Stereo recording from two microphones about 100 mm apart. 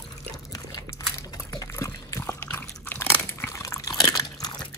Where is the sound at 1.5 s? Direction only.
30° left (ahead or behind).